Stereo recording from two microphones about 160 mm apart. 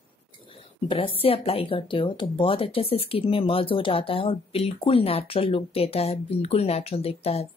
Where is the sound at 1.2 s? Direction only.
35° left (ahead or behind).